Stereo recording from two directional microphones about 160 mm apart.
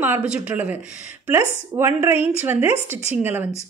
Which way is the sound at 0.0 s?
10° right (ahead or behind).